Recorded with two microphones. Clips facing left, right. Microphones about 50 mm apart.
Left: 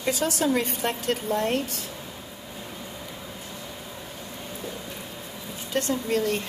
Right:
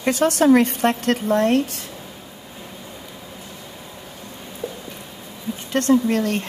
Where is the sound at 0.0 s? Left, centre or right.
Right.